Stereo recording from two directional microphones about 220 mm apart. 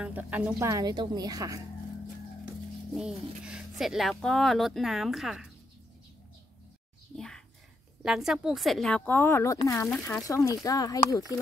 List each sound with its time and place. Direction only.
0.0 s a woman's voice: 5° right (ahead or behind)
3.0 s speech: 5° right (ahead or behind)
7.2 s speech: 5° left (ahead or behind)